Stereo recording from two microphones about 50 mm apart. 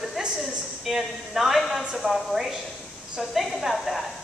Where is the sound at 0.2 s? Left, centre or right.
Centre.